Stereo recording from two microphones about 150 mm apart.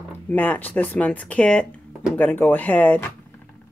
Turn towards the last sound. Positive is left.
turn(degrees=10)  # may be behind; listen again after turning